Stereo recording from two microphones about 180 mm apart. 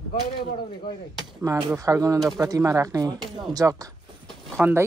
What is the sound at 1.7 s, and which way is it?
Speech, 20° right (ahead or behind).